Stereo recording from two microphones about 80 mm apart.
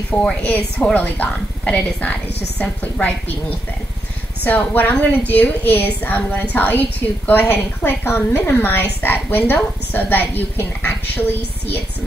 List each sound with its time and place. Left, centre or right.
0.1 s a woman's voice: centre